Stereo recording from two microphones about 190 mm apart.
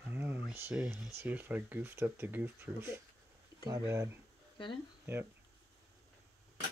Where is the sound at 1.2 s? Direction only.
10° right (ahead or behind).